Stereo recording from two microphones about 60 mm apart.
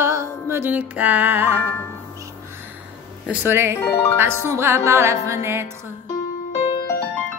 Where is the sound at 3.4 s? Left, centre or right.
Right.